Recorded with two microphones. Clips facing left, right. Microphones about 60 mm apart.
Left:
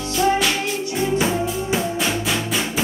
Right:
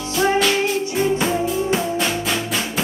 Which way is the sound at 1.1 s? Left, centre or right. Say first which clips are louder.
Right 1 dB; centre.